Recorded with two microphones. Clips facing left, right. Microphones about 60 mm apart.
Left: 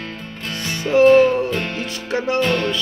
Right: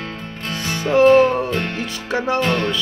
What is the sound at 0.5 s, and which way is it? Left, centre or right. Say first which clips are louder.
Music: even; right.